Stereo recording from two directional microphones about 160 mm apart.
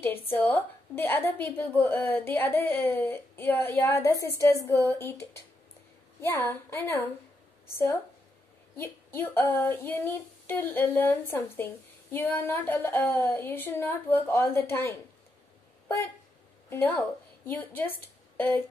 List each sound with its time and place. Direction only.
0.0 s female singing: 15° left (ahead or behind)
8.7 s female singing: 15° left (ahead or behind)
16.6 s a woman's voice: 15° left (ahead or behind)
17.5 s female singing: 10° left (ahead or behind)